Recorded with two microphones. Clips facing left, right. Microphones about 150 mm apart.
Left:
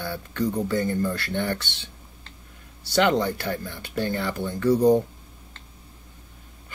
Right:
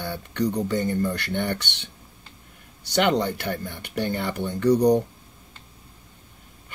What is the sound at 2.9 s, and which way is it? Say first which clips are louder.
Speech: left 1 dB; 20° right (ahead or behind).